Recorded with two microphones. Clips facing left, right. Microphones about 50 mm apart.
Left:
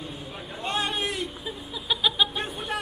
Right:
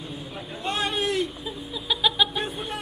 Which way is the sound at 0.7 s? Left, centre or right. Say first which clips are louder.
Right 2 dB; left.